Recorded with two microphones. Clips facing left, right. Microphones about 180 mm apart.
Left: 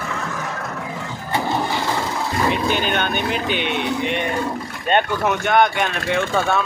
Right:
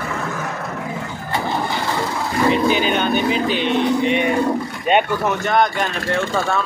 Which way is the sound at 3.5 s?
60° left (ahead or behind).